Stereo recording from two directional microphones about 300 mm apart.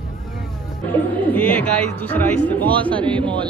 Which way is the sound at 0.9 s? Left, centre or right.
Centre.